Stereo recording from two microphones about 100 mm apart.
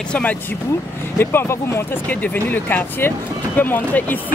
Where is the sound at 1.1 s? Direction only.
25° left (ahead or behind).